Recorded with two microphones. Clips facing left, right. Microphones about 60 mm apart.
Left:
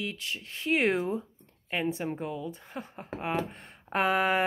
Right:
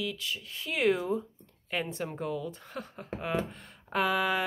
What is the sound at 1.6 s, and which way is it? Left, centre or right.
A woman's voice, centre.